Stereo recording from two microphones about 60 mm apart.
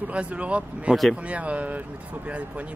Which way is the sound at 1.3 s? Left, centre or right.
Right.